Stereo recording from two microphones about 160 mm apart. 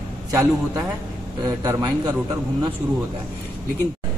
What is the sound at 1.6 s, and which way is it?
Speech, 25° right (ahead or behind).